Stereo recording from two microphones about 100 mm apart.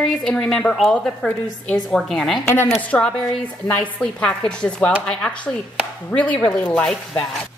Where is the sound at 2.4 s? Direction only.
20° left (ahead or behind).